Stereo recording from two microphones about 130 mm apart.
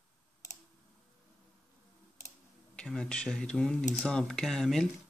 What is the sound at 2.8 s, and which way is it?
Speech, 5° left (ahead or behind).